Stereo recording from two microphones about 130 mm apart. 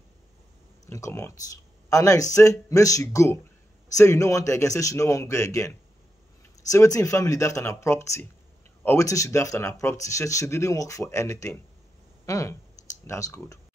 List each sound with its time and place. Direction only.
0.8 s speech: 25° left (ahead or behind)
6.7 s speech: 25° left (ahead or behind)